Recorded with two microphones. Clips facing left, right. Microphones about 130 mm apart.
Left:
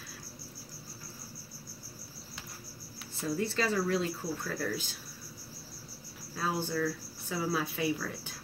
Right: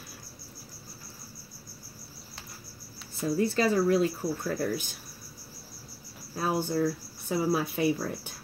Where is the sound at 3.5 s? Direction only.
15° right (ahead or behind).